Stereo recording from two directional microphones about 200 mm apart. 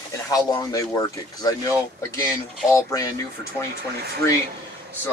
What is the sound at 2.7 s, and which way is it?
Speech, 15° left (ahead or behind).